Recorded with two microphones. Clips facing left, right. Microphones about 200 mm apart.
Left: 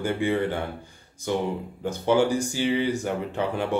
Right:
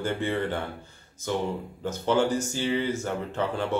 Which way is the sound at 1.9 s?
15° left (ahead or behind).